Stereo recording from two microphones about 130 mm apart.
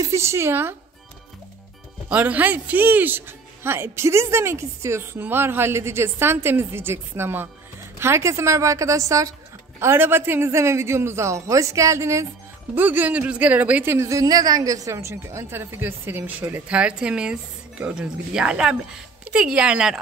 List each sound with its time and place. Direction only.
0.0 s speech: 20° right (ahead or behind)
2.0 s a man's voice: 10° right (ahead or behind)